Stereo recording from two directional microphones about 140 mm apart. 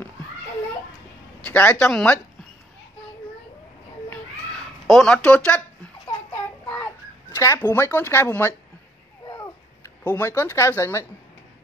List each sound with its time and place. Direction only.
1.4 s a man's voice: 10° left (ahead or behind)
1.9 s speech: centre (ahead or behind)
4.1 s a sound: centre (ahead or behind)
6.0 s babbling: 20° left (ahead or behind)
10.1 s speech: 15° left (ahead or behind)